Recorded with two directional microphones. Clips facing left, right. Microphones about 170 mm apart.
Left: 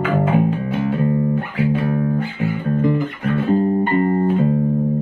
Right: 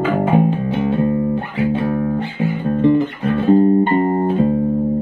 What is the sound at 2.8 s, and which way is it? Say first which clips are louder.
Music: right 7 dB; 25° right (ahead or behind).